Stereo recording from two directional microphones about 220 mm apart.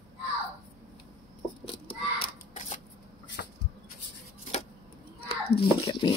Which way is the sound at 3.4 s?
45° left (ahead or behind).